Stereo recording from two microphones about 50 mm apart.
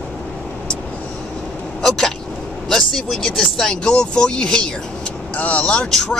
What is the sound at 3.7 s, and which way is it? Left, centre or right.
Speech, centre.